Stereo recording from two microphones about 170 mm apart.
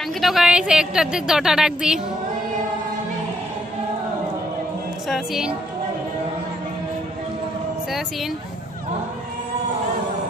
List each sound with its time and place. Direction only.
0.2 s a woman's voice: centre (ahead or behind)
5.0 s a woman's voice: centre (ahead or behind)